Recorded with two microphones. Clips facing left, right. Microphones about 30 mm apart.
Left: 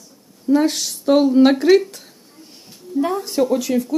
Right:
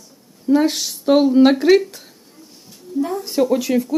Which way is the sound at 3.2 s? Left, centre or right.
Centre.